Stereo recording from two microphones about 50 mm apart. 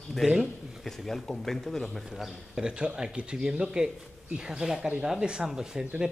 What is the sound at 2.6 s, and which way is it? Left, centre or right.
Speech, centre.